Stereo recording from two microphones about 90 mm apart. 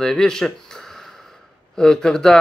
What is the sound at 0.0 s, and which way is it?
Speech, 5° left (ahead or behind).